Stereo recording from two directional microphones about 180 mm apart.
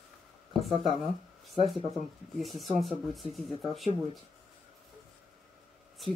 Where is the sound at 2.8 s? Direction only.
Centre (ahead or behind).